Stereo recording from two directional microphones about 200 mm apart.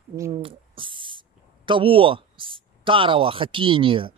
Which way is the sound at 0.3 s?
25° right (ahead or behind).